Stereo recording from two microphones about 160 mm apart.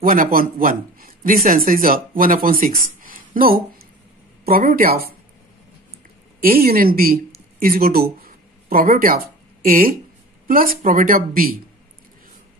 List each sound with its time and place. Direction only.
0.0 s speech: 65° right (ahead or behind)
3.0 s a sound: 65° right (ahead or behind)
4.5 s speech: 65° right (ahead or behind)
6.4 s speech: 70° right (ahead or behind)